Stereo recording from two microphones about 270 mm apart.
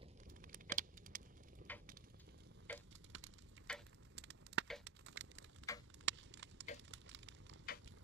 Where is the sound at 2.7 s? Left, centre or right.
Centre.